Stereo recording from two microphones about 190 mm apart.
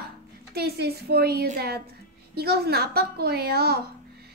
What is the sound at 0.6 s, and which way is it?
A woman's voice, 55° right (ahead or behind).